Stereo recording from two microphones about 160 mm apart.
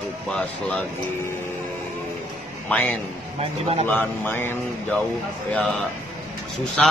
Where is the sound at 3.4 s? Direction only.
35° right (ahead or behind).